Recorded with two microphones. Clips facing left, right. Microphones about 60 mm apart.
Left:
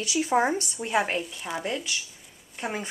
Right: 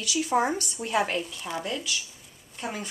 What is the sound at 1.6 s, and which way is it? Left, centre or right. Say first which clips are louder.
A woman's voice: left 1 dB; left.